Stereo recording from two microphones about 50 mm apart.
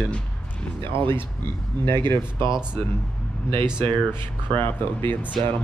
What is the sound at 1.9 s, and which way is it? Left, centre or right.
Speech, left.